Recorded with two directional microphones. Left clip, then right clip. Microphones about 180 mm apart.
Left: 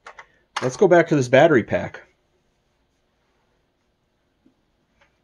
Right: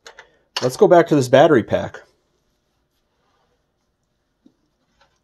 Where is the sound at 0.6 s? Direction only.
30° right (ahead or behind).